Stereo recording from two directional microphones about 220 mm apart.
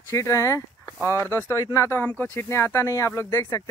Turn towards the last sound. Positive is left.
turn(degrees=15)  # may be behind; listen again after turning